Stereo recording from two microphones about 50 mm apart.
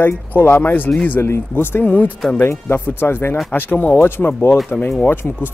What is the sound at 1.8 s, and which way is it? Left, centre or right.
Speech, left.